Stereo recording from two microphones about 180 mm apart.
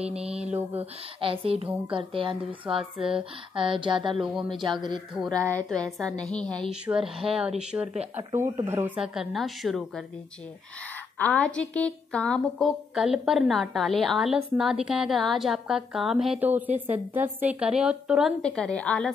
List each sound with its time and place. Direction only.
0.2 s speech: 35° right (ahead or behind)
0.5 s speech: 10° right (ahead or behind)
1.2 s speech: 30° right (ahead or behind)
4.2 s a woman's voice: centre (ahead or behind)
5.5 s a woman's voice: 5° left (ahead or behind)
8.2 s a woman's voice: 20° right (ahead or behind); by 10.0 s centre (ahead or behind)
11.1 s a woman's voice: 10° left (ahead or behind)